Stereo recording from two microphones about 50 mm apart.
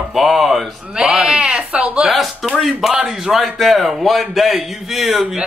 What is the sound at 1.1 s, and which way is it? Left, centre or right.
Sheep, centre.